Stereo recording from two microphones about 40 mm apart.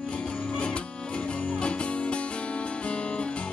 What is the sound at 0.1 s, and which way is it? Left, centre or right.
Music, left.